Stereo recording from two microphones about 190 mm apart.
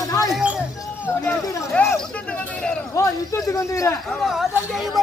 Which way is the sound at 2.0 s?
5° left (ahead or behind).